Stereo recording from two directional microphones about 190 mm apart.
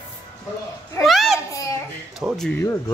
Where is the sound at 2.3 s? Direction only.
5° left (ahead or behind).